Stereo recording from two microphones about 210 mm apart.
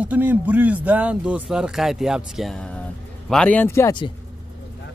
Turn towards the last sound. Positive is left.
turn(degrees=20)  # may be behind; listen again after turning